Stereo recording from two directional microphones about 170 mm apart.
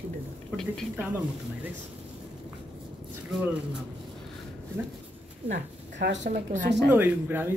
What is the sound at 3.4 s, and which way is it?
Speech, 5° right (ahead or behind).